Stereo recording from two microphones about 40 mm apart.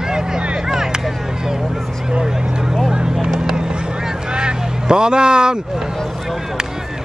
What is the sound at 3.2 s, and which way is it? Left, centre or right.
Vehicle, centre.